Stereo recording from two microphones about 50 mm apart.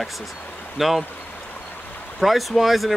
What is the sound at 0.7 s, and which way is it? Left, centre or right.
Speech, centre.